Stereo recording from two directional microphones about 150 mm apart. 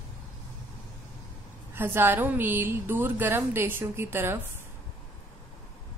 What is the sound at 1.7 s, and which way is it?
A woman's voice, 15° right (ahead or behind).